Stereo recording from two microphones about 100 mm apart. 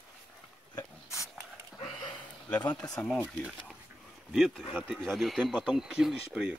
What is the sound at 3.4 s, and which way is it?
Speech, 10° right (ahead or behind).